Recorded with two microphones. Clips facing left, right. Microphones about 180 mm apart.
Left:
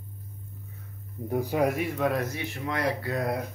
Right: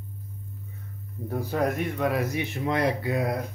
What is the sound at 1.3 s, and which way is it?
A man's voice, 15° left (ahead or behind).